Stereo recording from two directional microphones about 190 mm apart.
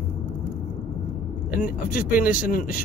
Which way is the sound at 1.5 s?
45° left (ahead or behind).